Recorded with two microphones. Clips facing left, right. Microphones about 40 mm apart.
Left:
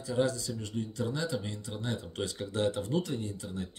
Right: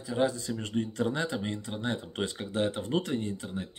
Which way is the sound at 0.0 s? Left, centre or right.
Centre.